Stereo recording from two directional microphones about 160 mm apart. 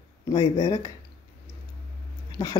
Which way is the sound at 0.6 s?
25° left (ahead or behind).